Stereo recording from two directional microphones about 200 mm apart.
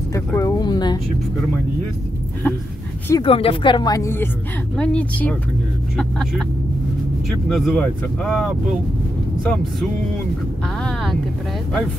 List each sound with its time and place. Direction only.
0.1 s a sound: 15° left (ahead or behind)
3.1 s speech: 25° left (ahead or behind); by 6.4 s 5° left (ahead or behind)
7.4 s speech: centre (ahead or behind)